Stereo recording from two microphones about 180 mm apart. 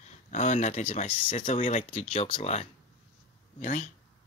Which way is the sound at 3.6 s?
45° left (ahead or behind).